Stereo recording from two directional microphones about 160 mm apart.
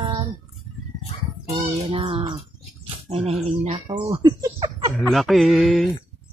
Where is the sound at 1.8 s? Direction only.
35° right (ahead or behind).